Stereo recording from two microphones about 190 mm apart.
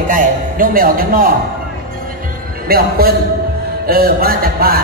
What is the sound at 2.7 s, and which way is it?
Speech, 50° right (ahead or behind).